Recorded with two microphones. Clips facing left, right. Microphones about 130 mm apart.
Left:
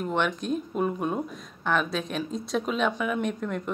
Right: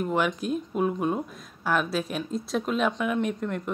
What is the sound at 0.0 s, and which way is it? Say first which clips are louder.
Speech: right 1 dB; 5° right (ahead or behind).